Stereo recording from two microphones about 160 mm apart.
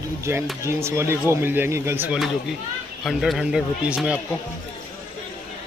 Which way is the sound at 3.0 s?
Centre (ahead or behind).